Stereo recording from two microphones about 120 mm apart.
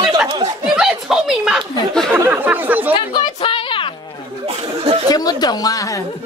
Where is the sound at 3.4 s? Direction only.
45° left (ahead or behind).